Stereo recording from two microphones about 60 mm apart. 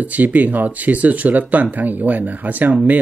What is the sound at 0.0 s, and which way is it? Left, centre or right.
Speech, right.